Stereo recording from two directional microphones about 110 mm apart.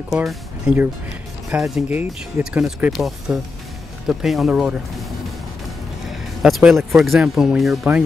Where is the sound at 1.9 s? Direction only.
15° right (ahead or behind).